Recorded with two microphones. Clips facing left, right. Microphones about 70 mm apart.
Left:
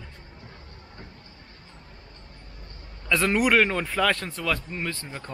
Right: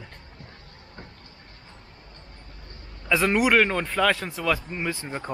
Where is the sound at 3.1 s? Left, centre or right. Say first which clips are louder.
Right 1 dB; centre.